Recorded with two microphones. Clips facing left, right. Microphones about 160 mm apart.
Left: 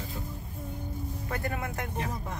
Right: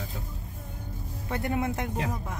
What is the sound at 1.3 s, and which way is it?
Speech, 20° right (ahead or behind).